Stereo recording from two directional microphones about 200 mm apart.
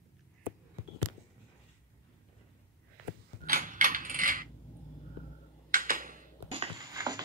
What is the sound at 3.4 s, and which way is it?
Mechanisms, 40° right (ahead or behind).